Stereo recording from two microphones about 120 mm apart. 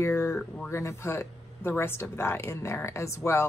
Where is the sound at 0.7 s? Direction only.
20° left (ahead or behind).